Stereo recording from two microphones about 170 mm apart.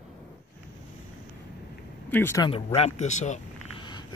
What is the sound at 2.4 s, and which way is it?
Speech, 35° left (ahead or behind).